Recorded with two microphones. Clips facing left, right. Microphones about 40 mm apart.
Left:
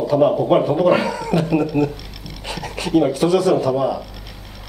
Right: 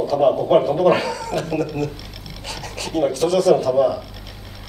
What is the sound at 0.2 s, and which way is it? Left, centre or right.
Speech, centre.